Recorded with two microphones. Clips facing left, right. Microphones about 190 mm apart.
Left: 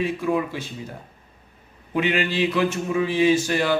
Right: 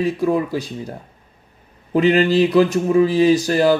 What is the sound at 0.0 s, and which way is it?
A man's voice, 35° right (ahead or behind).